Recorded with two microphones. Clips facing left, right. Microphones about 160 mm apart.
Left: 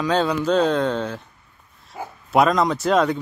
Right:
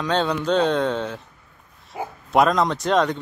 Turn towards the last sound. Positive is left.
turn(degrees=5)  # may be behind; listen again after turning